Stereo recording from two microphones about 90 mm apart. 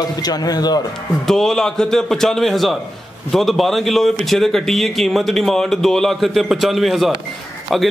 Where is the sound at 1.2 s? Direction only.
5° left (ahead or behind).